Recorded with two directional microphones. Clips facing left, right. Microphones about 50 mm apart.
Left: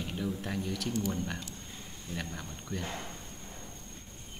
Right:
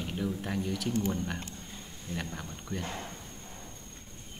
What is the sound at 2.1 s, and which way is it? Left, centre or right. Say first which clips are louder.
Speech: right 2 dB; centre.